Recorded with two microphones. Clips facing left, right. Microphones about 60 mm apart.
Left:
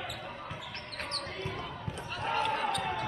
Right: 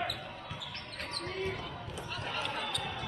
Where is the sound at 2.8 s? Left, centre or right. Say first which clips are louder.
Left 6 dB; left.